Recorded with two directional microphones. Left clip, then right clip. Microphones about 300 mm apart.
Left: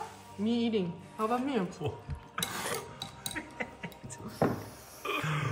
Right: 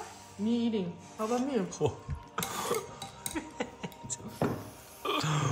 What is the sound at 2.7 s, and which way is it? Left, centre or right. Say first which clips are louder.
Burping: right 3 dB; centre.